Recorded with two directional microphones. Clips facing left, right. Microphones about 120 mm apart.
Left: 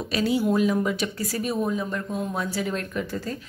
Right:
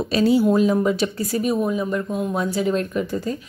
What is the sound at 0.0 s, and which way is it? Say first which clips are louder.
Speech: right 6 dB; 30° right (ahead or behind).